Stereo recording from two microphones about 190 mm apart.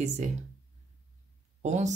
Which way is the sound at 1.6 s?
40° right (ahead or behind).